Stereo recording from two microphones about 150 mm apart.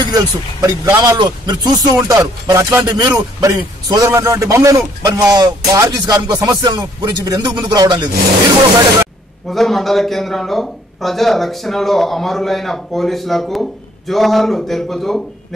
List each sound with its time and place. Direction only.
0.0 s speech: 25° right (ahead or behind)
9.5 s speech: centre (ahead or behind)